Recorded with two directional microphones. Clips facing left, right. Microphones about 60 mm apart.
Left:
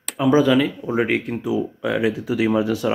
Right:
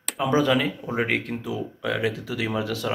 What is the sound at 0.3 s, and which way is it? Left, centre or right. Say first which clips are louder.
Speech: left 6 dB; centre.